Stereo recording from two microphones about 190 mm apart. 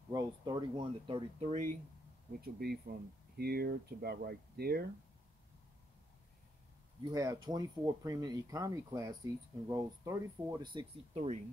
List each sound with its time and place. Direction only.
0.1 s speech: 20° right (ahead or behind); by 1.8 s 40° right (ahead or behind)
2.4 s speech: 55° right (ahead or behind)
7.1 s speech: 20° right (ahead or behind)